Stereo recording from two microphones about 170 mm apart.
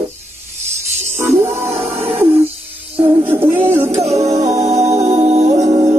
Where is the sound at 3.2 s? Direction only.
10° right (ahead or behind).